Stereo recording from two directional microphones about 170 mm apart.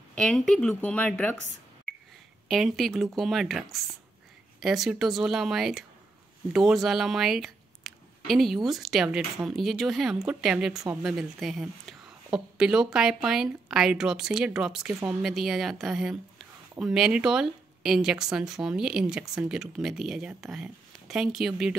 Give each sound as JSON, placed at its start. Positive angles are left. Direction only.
{"t": 0.1, "sound": "speech", "side_deg": 5}
{"t": 2.4, "sound": "speech", "side_deg": 0}